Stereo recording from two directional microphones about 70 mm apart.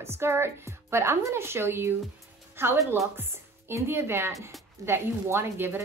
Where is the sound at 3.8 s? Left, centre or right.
Right.